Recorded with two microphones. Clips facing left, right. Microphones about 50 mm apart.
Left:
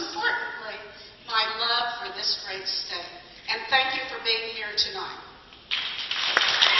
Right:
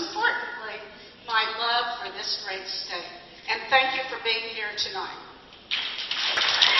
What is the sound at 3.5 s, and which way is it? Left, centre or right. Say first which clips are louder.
A woman's voice: right 2 dB; centre.